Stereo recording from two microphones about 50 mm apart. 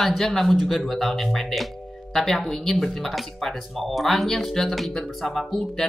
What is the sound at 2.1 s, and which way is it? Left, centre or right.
Music, centre.